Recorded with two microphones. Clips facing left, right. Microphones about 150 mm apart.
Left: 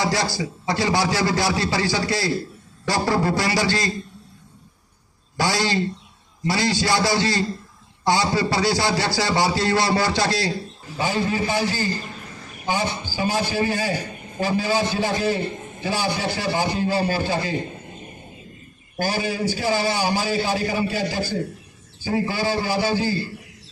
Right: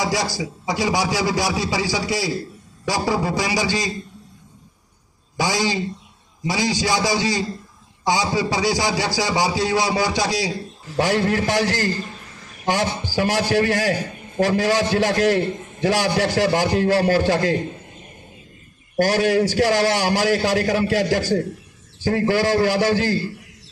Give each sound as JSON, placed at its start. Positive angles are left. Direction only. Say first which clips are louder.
{"t": 0.0, "sound": "a man's voice", "louder": "even", "side_deg": -15}
{"t": 2.3, "sound": "a sound", "louder": "left 1 dB", "side_deg": -10}
{"t": 3.1, "sound": "a man's voice", "louder": "left 1 dB", "side_deg": -15}
{"t": 5.4, "sound": "a man's voice", "louder": "even", "side_deg": -15}
{"t": 11.0, "sound": "a man's voice", "louder": "right 4 dB", "side_deg": -80}
{"t": 18.9, "sound": "a man's voice", "louder": "right 7 dB", "side_deg": -80}